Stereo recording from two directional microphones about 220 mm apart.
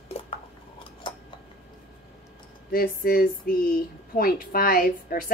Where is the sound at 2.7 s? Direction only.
40° left (ahead or behind).